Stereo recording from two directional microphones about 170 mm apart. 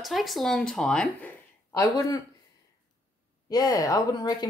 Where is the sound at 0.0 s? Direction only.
Centre (ahead or behind).